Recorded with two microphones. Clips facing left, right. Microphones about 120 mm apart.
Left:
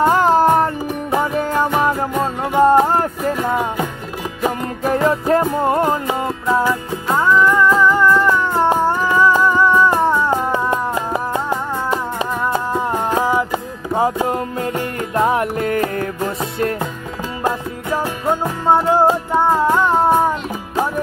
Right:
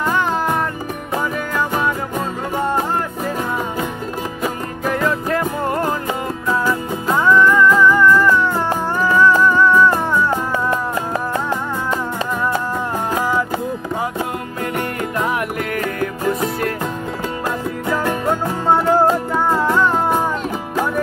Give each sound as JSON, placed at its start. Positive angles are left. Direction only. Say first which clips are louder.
{"t": 0.0, "sound": "music", "louder": "left 6 dB", "side_deg": 35}
{"t": 4.4, "sound": "music", "louder": "left 7 dB", "side_deg": 35}
{"t": 13.2, "sound": "music", "louder": "left 1 dB", "side_deg": 15}
{"t": 15.1, "sound": "music", "louder": "left 6 dB", "side_deg": 30}
{"t": 18.7, "sound": "music", "louder": "left 1 dB", "side_deg": 20}